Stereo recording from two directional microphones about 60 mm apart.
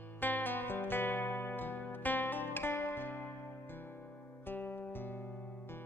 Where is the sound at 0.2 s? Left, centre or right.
Left.